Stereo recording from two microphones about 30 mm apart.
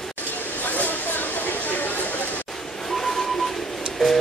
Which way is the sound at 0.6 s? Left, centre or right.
Left.